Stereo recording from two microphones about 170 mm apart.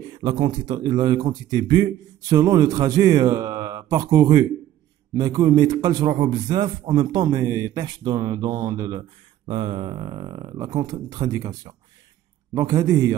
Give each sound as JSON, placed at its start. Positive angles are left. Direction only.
{"t": 0.2, "sound": "a man's voice", "side_deg": -30}